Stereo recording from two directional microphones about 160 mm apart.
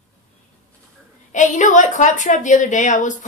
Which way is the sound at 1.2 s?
50° left (ahead or behind).